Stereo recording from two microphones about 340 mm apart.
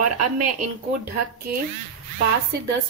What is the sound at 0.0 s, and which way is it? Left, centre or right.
Speech, right.